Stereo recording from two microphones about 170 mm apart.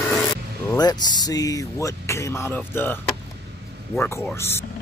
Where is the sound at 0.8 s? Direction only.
25° left (ahead or behind).